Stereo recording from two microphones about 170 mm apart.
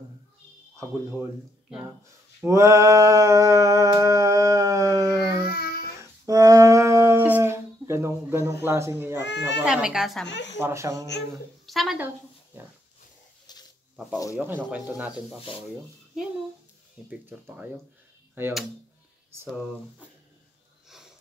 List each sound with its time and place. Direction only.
0.7 s speech: 20° right (ahead or behind)
2.4 s a sound: 15° right (ahead or behind)
5.5 s child singing: 65° left (ahead or behind)
6.2 s humming: 20° right (ahead or behind)
8.6 s speech: 15° right (ahead or behind)
9.2 s speech: 90° left
9.7 s speech: 5° right (ahead or behind)
10.2 s speech: 90° left
10.6 s speech: 15° right (ahead or behind)
11.6 s a woman's voice: centre (ahead or behind)
13.5 s a sound: 25° left (ahead or behind)
14.1 s speech: 20° left (ahead or behind)
14.7 s speech: 10° right (ahead or behind)
17.1 s speech: 10° right (ahead or behind)